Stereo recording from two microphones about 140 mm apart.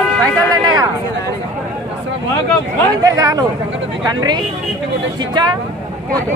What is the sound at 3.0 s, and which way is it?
Speech, 25° right (ahead or behind).